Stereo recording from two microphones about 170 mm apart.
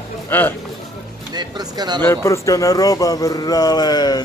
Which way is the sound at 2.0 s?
15° left (ahead or behind).